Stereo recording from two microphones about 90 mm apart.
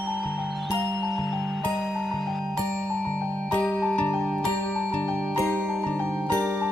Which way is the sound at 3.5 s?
15° left (ahead or behind).